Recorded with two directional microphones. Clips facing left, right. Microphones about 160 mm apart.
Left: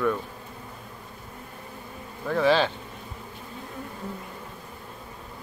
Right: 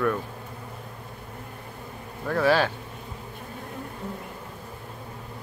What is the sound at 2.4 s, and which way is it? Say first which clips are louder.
Speech: even; 10° right (ahead or behind).